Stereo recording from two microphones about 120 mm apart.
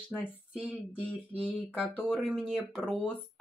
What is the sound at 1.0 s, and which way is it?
Speech, 10° left (ahead or behind).